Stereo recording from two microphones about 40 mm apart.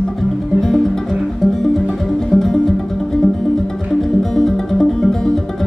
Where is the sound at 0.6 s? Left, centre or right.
Centre.